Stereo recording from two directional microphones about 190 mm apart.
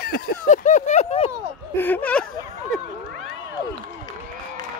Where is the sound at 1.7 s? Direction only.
10° left (ahead or behind).